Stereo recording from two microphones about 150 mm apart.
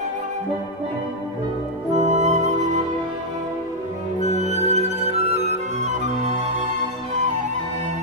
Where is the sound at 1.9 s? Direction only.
50° right (ahead or behind).